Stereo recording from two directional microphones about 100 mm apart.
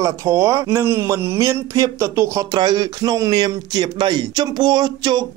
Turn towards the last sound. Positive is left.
turn(degrees=-45)  # may be behind; listen again after turning